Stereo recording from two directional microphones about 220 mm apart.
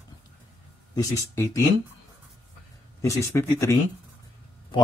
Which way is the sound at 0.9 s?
15° left (ahead or behind).